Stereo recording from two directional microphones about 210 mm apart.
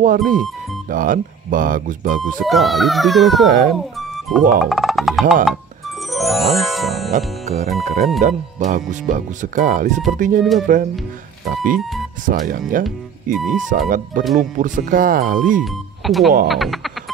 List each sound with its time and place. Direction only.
0.0 s speech: 40° right (ahead or behind)
2.4 s a child's voice: centre (ahead or behind)
4.6 s a child's voice: centre (ahead or behind)
6.1 s music: centre (ahead or behind)
7.1 s speech: 35° right (ahead or behind)
15.6 s a child's voice: centre (ahead or behind)